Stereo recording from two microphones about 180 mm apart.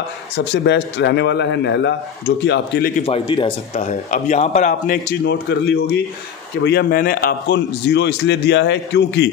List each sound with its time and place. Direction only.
0.5 s a man's voice: 75° left (ahead or behind)
3.0 s speech: 30° left (ahead or behind)
5.2 s a man's voice: 65° left (ahead or behind)